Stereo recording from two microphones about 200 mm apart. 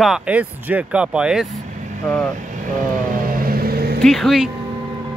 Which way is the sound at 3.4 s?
50° right (ahead or behind).